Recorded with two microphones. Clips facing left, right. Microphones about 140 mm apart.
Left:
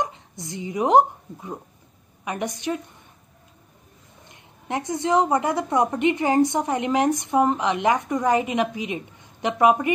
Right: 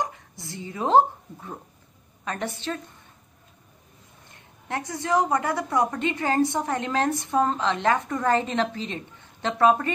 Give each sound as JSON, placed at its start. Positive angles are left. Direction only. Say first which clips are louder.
{"t": 0.0, "sound": "a woman's voice", "louder": "left 2 dB", "side_deg": 20}
{"t": 4.3, "sound": "a woman's voice", "louder": "left 3 dB", "side_deg": 20}